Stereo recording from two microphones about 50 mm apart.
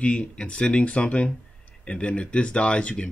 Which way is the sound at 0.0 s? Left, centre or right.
Left.